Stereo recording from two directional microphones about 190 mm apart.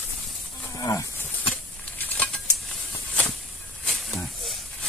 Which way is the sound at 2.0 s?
10° left (ahead or behind).